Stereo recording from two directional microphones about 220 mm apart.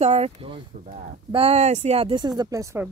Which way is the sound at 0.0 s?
30° right (ahead or behind).